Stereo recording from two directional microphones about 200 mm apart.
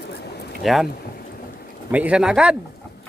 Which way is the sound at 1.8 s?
5° right (ahead or behind).